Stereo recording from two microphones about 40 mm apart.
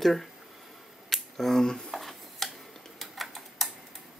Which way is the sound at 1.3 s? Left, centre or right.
Centre.